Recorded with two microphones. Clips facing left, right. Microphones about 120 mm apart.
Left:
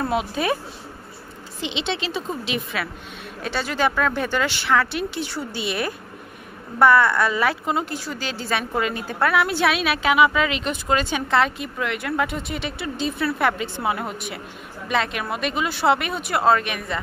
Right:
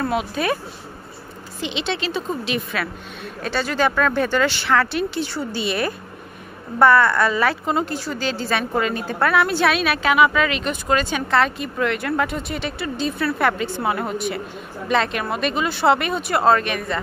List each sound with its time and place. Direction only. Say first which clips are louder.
0.0 s a woman's voice: right 1 dB; 25° left (ahead or behind)
1.6 s a woman's voice: right 2 dB; 20° left (ahead or behind)